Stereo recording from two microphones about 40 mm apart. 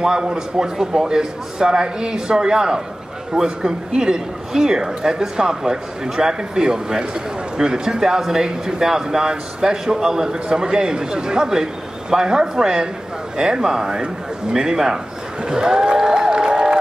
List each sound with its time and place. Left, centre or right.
0.0 s speech: centre